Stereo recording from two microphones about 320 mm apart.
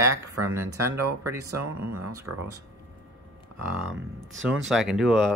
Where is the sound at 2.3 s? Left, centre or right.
Right.